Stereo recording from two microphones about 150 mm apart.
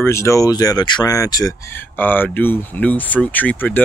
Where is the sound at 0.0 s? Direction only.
20° left (ahead or behind).